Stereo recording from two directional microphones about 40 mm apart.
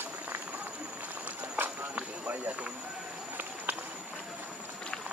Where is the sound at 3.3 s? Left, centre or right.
Right.